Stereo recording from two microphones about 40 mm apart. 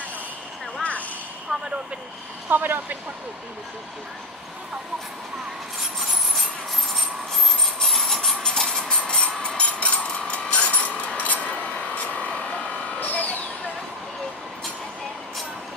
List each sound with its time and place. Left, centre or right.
1.5 s vehicle: centre
2.5 s speech: right
6.9 s train: centre
8.4 s a sound: centre; by 12.4 s left
13.0 s vehicle: left